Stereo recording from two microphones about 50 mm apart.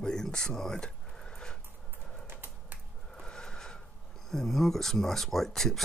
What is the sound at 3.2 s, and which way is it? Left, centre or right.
Snort, centre.